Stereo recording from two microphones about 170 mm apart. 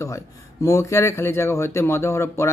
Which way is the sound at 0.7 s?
15° left (ahead or behind).